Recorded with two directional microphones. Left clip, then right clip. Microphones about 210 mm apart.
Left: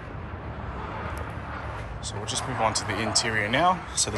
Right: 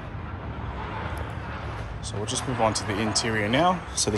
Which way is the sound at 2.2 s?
20° right (ahead or behind).